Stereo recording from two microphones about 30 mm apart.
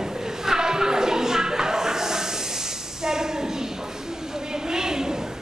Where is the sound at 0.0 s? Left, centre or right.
Centre.